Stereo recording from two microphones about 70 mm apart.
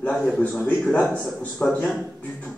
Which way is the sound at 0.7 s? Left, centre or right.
Centre.